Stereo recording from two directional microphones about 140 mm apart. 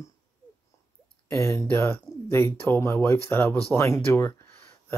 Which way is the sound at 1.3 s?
20° left (ahead or behind).